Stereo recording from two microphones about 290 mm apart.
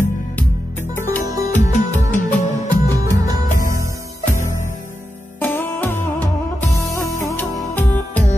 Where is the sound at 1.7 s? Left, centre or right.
Left.